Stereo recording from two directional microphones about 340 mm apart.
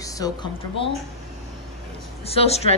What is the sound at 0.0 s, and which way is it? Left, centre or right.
Speech, centre.